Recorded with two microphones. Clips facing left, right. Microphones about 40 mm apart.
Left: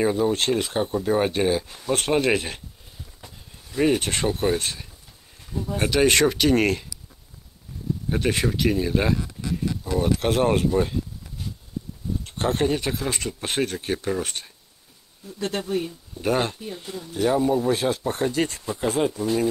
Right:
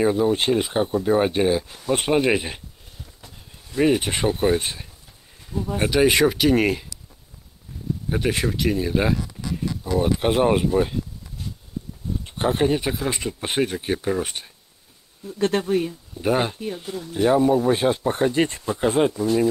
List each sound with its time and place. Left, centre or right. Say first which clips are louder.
0.0 s speech: right 2 dB; centre
3.2 s a sound: even; centre
3.8 s speech: right 2 dB; centre
8.1 s speech: even; centre
12.3 s speech: right 2 dB; centre
15.3 s speech: right 6 dB; right
15.6 s speech: right 4 dB; right
16.2 s speech: right 2 dB; centre; by 19.1 s right